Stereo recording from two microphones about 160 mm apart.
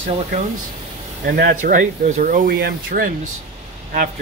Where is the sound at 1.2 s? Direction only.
75° right (ahead or behind).